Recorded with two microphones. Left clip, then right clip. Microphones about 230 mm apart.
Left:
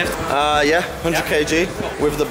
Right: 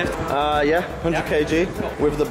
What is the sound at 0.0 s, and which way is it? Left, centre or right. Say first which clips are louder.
Speech: left 3 dB; centre.